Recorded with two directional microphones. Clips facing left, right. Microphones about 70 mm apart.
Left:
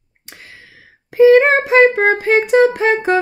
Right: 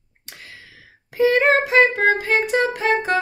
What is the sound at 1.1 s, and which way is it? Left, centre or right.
Child singing, left.